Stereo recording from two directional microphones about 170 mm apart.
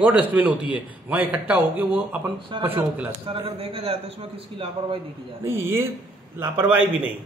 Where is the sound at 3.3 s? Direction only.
35° right (ahead or behind).